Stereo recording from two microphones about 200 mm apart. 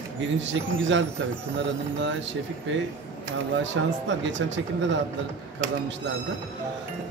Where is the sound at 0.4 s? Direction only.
65° right (ahead or behind).